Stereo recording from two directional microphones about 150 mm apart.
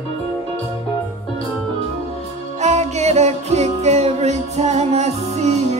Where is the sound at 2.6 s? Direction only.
50° right (ahead or behind).